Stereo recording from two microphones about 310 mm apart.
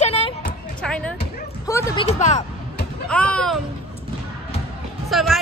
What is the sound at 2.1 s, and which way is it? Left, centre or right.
Speech, left.